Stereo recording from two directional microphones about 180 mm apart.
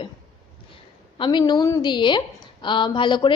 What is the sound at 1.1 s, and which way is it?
A woman's voice, 25° left (ahead or behind).